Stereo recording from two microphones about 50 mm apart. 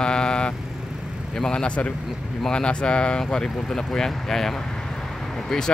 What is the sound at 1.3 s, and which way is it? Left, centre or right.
Speech, centre.